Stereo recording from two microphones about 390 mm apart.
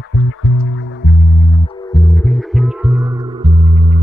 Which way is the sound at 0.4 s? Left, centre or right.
Left.